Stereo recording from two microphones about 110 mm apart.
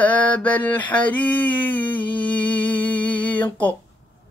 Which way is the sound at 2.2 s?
15° left (ahead or behind).